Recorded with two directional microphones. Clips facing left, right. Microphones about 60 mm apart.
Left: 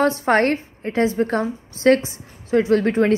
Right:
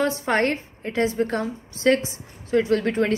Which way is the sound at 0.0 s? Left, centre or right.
Left.